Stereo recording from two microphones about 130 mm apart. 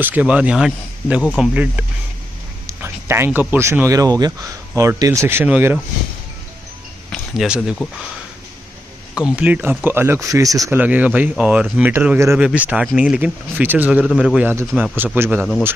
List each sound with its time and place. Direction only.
0.0 s speech: 10° right (ahead or behind)
2.6 s a sound: 20° right (ahead or behind)
3.3 s speech: 15° right (ahead or behind)
7.1 s speech: 5° right (ahead or behind)
9.1 s speech: 10° right (ahead or behind); by 10.8 s 25° right (ahead or behind)
10.8 s a man's voice: 10° right (ahead or behind)
15.1 s speech: 20° right (ahead or behind)